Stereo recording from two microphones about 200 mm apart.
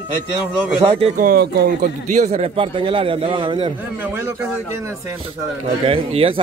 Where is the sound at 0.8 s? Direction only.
30° right (ahead or behind).